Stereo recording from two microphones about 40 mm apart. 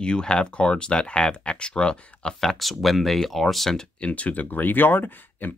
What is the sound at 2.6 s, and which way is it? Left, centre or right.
Speech, centre.